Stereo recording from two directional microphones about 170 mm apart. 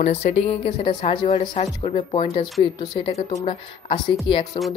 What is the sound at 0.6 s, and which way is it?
Speech, 30° left (ahead or behind).